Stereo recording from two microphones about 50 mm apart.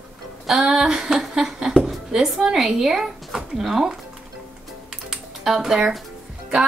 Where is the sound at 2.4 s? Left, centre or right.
Centre.